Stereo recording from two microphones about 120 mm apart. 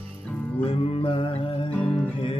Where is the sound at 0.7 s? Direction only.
45° left (ahead or behind).